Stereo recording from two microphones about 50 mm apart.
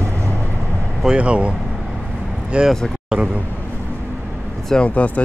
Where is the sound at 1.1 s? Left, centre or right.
Right.